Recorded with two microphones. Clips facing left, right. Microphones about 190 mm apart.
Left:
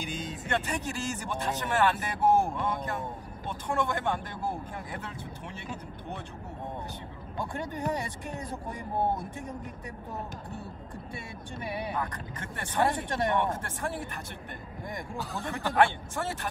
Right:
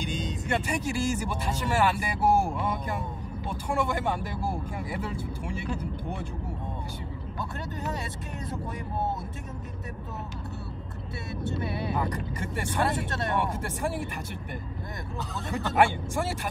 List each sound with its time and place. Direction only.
0.0 s vehicle: 5° left (ahead or behind)
0.5 s speech: 10° right (ahead or behind)
7.3 s speech: 20° left (ahead or behind)
11.6 s speech: 15° left (ahead or behind)
12.0 s speech: 10° right (ahead or behind)
12.8 s speech: 20° left (ahead or behind)
13.4 s speech: 10° right (ahead or behind)
15.5 s speech: 10° right (ahead or behind)